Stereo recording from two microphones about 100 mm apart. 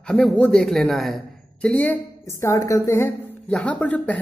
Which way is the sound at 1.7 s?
15° left (ahead or behind).